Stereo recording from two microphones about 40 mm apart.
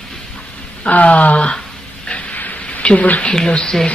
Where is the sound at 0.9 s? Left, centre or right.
Left.